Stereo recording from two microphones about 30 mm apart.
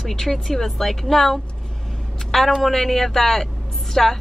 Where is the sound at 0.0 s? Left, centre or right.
Centre.